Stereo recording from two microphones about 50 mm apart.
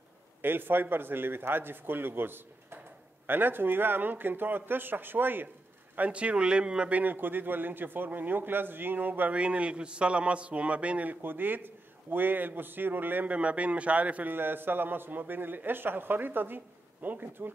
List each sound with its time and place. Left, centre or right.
0.4 s a man's voice: right
5.9 s a man's voice: right
7.0 s a man's voice: right
9.3 s a man's voice: right
11.2 s a man's voice: right
13.3 s a man's voice: right
14.3 s a man's voice: right